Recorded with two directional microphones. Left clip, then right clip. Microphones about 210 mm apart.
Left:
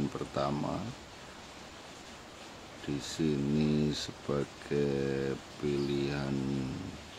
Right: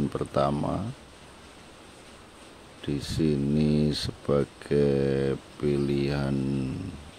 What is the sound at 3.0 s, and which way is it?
Speech, 25° right (ahead or behind).